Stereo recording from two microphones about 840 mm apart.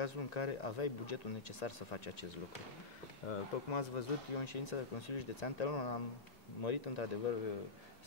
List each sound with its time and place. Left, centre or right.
0.0 s speech: left
3.3 s speech: left